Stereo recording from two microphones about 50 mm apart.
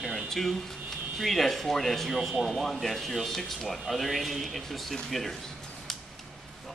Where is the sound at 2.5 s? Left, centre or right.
Centre.